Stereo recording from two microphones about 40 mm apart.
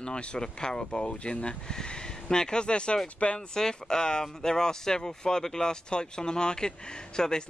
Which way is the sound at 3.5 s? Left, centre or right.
Centre.